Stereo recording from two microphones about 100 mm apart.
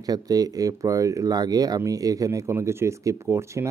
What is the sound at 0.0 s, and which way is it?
Speech, 40° right (ahead or behind).